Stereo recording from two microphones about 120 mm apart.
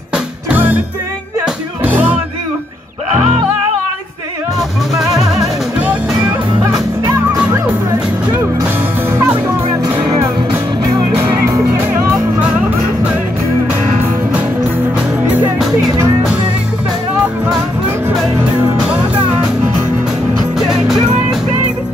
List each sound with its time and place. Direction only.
0.1 s music: 15° right (ahead or behind)
9.1 s music: 20° right (ahead or behind)
11.4 s music: 20° right (ahead or behind)
20.5 s music: 5° right (ahead or behind)